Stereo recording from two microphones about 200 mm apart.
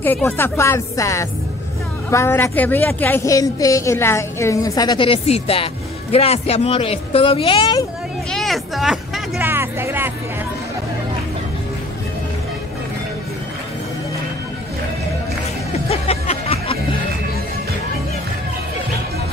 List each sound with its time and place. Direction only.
0.0 s speech: 10° left (ahead or behind)
8.3 s speech: centre (ahead or behind)
15.9 s music: 30° left (ahead or behind)